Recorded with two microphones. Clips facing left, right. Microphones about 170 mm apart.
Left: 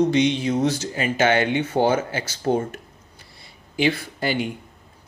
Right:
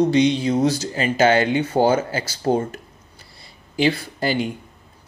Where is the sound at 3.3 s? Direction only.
35° right (ahead or behind).